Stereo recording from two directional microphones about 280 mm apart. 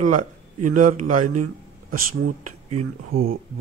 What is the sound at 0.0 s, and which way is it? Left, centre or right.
Speech, right.